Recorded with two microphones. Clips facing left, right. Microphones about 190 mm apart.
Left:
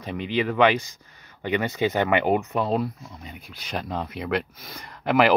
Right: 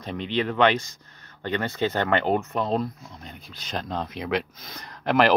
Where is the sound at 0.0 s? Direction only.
5° left (ahead or behind).